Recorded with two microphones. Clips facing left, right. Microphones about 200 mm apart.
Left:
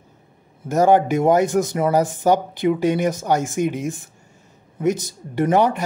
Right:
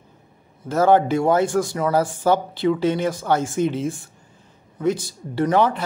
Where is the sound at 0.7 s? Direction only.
15° left (ahead or behind).